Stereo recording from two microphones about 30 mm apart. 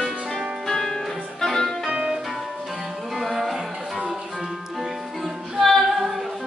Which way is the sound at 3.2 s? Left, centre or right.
Centre.